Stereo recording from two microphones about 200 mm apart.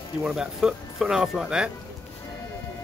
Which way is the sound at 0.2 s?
5° right (ahead or behind).